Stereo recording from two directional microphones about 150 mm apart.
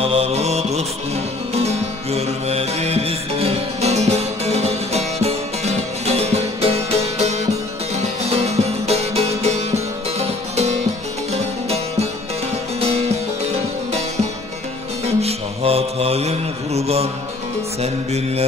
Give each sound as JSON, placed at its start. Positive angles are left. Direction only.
{"t": 0.0, "sound": "mantra", "side_deg": -40}
{"t": 1.5, "sound": "music", "side_deg": -45}
{"t": 15.0, "sound": "mantra", "side_deg": -40}